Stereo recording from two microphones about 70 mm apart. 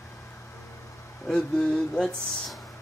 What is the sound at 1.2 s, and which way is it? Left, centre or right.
Speech, centre.